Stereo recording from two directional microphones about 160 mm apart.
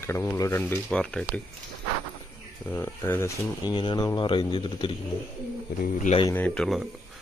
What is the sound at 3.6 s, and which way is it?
Speech, 25° left (ahead or behind).